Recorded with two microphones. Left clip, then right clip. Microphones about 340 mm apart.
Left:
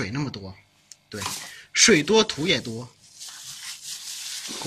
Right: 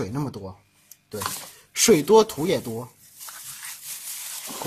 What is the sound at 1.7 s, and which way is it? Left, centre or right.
Speech, right.